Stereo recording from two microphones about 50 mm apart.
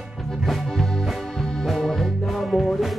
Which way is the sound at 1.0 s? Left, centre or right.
Centre.